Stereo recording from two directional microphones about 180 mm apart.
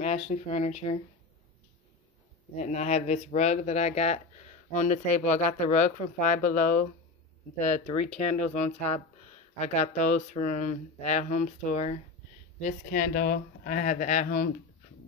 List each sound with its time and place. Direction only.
0.0 s speech: 40° left (ahead or behind)
2.5 s speech: 40° left (ahead or behind)